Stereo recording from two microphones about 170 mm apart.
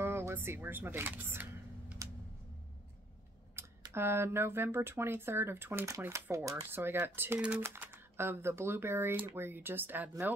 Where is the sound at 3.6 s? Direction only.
15° right (ahead or behind).